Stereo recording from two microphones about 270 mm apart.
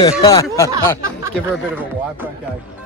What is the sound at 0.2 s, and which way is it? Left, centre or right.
Speech, centre.